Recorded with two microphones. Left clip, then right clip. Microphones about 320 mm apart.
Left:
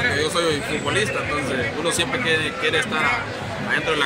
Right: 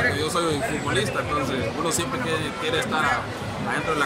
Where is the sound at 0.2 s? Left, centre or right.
Centre.